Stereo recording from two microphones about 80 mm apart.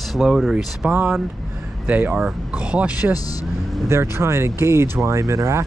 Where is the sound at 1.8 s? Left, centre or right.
Right.